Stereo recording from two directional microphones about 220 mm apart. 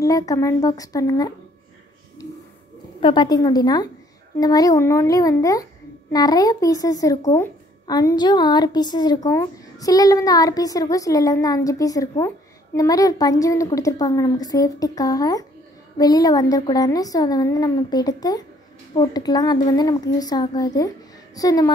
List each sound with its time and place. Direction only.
0.0 s speech: 15° left (ahead or behind)
3.0 s a woman's voice: 20° left (ahead or behind)